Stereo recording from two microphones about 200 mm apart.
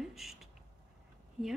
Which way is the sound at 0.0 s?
Centre (ahead or behind).